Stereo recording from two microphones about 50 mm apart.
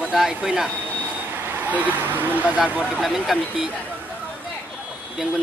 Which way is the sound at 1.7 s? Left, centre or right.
Right.